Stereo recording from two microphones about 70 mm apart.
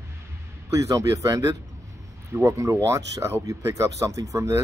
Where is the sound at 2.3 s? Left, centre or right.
Right.